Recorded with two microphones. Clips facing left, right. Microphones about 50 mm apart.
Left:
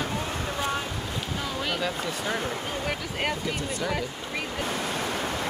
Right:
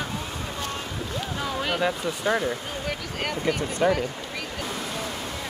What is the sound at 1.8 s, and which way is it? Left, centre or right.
Speech, centre.